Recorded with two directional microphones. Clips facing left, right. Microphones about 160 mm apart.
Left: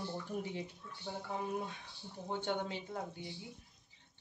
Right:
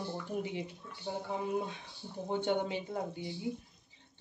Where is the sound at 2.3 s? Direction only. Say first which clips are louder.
Right 5 dB; 15° right (ahead or behind).